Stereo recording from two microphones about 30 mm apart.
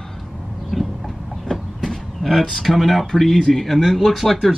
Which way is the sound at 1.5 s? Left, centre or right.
Centre.